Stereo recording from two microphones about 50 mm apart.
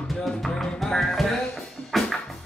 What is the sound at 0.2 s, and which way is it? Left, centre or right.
Music, centre.